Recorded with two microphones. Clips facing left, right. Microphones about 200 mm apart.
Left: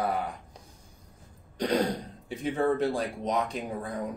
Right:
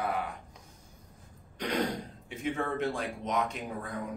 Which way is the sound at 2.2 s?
35° left (ahead or behind).